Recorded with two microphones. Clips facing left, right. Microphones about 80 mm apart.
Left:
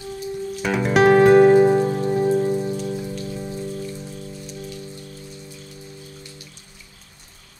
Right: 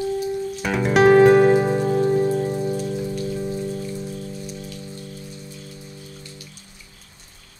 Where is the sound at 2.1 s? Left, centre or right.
Centre.